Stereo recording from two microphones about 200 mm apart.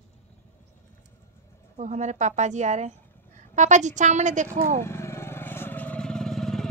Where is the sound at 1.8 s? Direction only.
35° right (ahead or behind).